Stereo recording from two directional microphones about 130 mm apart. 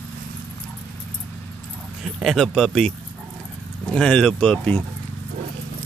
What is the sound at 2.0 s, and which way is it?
Speech, centre (ahead or behind).